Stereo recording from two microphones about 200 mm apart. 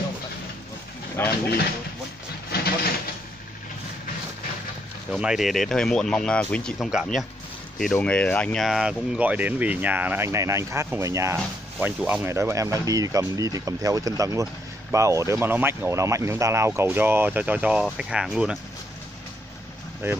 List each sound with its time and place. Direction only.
1.2 s vehicle: 10° left (ahead or behind)
2.5 s a sound: 50° left (ahead or behind)
5.1 s speech: centre (ahead or behind)